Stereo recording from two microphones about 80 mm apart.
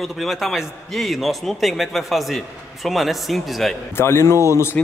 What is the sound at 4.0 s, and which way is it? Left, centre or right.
Speech, left.